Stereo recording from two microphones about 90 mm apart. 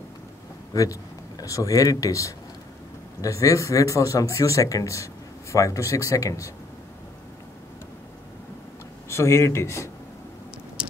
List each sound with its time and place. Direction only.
1.4 s speech: 40° left (ahead or behind)
9.1 s speech: 30° left (ahead or behind)